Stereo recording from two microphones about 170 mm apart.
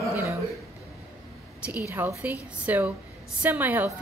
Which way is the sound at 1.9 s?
10° right (ahead or behind).